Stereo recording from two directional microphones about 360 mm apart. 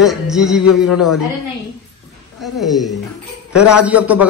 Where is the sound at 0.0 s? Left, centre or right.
Centre.